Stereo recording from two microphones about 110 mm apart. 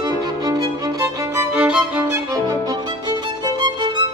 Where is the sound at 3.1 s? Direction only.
40° right (ahead or behind).